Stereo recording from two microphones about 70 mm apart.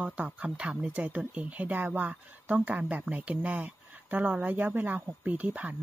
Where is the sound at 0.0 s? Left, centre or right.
Centre.